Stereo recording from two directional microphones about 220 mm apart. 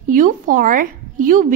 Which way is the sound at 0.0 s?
35° right (ahead or behind).